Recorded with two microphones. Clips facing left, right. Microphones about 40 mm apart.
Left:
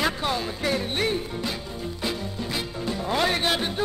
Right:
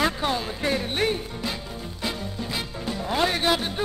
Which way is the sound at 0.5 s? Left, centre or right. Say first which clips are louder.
Even; centre.